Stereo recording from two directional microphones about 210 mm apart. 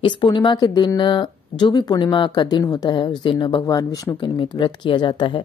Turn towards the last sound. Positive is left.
turn(degrees=25)  # may be behind; listen again after turning